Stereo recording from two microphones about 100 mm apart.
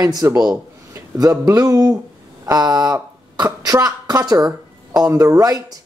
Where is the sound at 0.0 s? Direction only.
40° right (ahead or behind).